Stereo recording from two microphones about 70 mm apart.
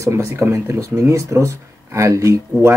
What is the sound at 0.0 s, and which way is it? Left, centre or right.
Speech, right.